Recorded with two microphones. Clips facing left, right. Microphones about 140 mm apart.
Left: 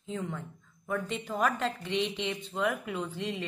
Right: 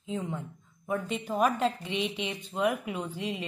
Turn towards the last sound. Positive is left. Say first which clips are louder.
# even
turn(degrees=-15)  # may be behind; listen again after turning